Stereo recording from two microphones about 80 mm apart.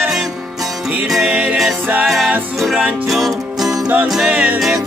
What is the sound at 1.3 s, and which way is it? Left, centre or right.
Music, centre.